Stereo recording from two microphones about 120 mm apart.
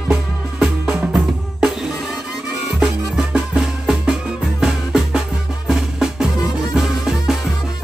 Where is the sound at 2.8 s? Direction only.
5° right (ahead or behind).